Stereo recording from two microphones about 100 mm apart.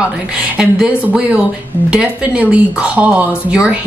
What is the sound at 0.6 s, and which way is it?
Speech, 10° right (ahead or behind).